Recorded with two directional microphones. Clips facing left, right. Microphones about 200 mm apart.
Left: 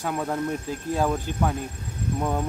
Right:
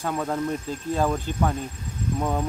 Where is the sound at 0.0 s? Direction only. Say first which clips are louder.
Right 1 dB; 5° left (ahead or behind).